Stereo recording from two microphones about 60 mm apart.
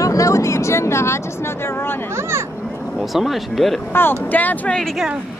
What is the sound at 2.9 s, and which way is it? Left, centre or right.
Speech, centre.